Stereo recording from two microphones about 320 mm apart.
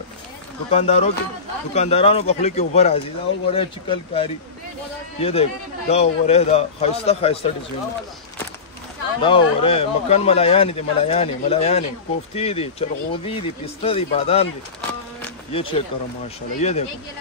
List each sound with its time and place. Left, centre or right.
0.7 s speech: centre
9.2 s speech: centre
15.5 s speech: centre